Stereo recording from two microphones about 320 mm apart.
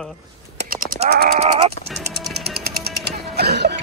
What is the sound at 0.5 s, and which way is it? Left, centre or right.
Crow, right.